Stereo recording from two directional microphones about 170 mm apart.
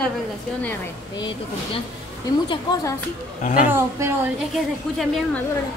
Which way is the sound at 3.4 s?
50° left (ahead or behind).